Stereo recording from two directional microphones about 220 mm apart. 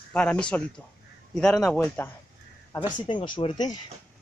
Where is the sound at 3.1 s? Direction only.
20° left (ahead or behind).